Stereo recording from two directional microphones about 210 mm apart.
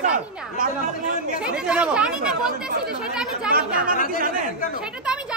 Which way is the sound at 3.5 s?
45° right (ahead or behind).